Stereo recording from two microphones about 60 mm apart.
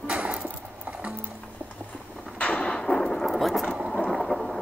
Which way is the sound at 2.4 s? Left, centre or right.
Left.